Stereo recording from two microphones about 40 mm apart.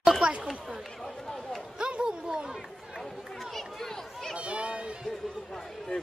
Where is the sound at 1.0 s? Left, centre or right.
Centre.